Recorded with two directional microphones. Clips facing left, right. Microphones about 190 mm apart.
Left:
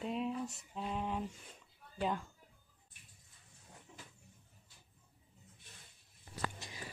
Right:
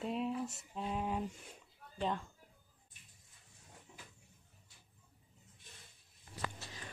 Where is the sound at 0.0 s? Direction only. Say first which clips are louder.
Even; centre (ahead or behind).